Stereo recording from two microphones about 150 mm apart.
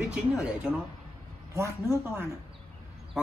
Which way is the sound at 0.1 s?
10° right (ahead or behind).